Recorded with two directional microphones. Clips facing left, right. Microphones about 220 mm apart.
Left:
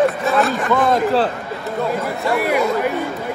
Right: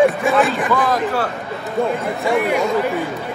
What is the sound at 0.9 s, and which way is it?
Speech, 30° left (ahead or behind).